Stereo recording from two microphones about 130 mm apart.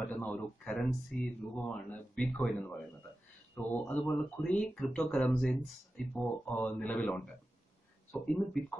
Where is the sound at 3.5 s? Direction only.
15° left (ahead or behind).